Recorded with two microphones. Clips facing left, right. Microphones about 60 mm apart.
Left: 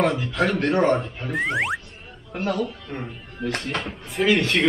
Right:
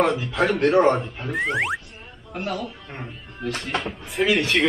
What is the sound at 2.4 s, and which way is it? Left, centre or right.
Speech, left.